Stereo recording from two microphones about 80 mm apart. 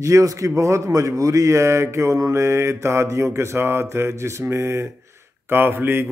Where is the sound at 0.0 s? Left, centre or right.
Right.